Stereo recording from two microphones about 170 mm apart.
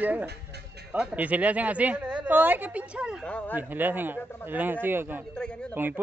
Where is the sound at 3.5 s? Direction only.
10° right (ahead or behind).